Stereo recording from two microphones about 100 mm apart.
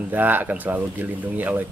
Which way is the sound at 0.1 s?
20° right (ahead or behind).